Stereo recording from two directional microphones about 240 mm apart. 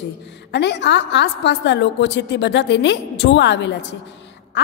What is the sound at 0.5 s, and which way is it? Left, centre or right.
A woman's voice, left.